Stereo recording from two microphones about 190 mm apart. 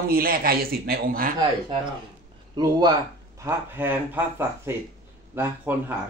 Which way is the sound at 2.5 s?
25° right (ahead or behind).